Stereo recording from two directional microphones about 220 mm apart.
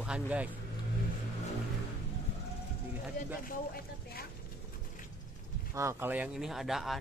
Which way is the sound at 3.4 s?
45° left (ahead or behind).